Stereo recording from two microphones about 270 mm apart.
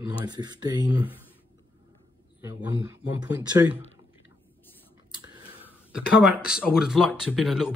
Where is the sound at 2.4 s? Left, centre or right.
Centre.